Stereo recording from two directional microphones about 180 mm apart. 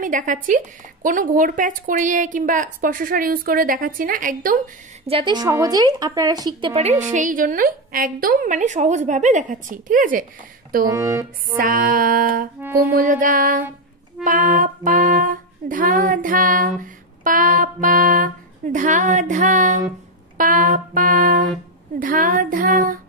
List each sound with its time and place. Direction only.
0.0 s music: 45° right (ahead or behind)
5.0 s a woman's voice: 30° right (ahead or behind)
6.7 s music: 35° right (ahead or behind)
10.9 s speech: 15° right (ahead or behind)
11.5 s music: 50° right (ahead or behind)